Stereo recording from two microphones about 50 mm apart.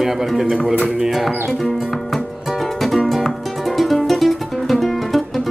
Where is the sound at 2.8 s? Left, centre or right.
Centre.